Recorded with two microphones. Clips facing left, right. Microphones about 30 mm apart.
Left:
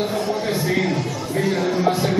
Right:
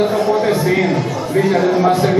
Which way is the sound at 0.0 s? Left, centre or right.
Centre.